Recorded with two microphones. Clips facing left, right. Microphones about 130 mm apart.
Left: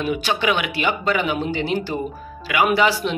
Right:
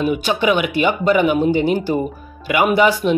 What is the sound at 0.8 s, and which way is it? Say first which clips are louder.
Speech: right 6 dB; 45° right (ahead or behind).